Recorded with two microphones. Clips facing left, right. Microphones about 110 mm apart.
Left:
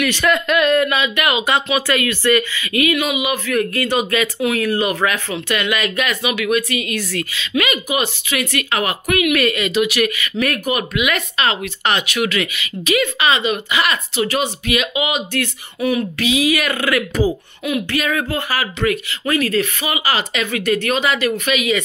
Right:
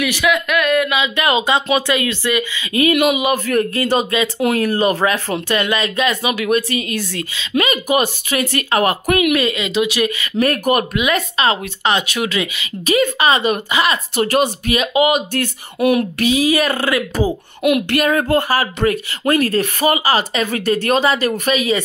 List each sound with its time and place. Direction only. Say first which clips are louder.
0.0 s speech: even; 5° right (ahead or behind)
1.1 s speech: right 2 dB; 30° right (ahead or behind)
2.8 s speech: right 4 dB; 45° right (ahead or behind)
11.1 s speech: right 3 dB; 30° right (ahead or behind)
15.8 s speech: right 4 dB; 60° right (ahead or behind); by 17.4 s 25° right (ahead or behind)
17.6 s speech: right 5 dB; 65° right (ahead or behind)
18.0 s speech: right 6 dB; 40° right (ahead or behind)